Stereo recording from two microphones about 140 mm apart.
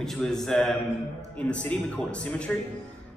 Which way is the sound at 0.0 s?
5° left (ahead or behind).